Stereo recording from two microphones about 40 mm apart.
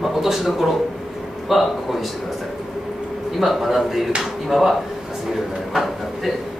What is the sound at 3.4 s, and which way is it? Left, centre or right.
A man's voice, centre.